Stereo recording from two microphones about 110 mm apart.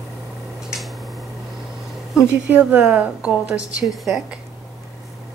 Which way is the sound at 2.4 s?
10° right (ahead or behind).